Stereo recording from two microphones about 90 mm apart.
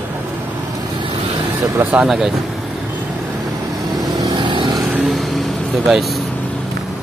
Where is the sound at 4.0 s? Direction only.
55° right (ahead or behind).